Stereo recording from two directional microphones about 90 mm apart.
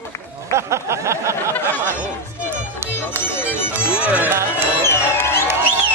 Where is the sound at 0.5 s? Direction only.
30° right (ahead or behind).